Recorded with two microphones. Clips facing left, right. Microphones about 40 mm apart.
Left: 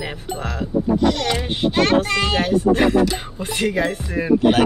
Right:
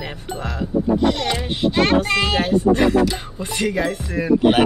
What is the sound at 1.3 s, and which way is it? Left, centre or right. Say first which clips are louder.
Speech: even; centre.